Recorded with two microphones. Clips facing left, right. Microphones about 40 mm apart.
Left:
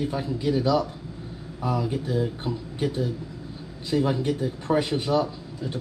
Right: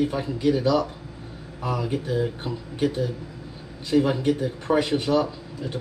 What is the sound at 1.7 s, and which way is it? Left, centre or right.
Speech, right.